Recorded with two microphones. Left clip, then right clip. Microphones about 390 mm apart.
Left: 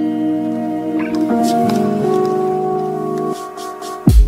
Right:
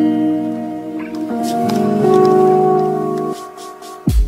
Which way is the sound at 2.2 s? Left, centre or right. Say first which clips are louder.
Right 6 dB; right.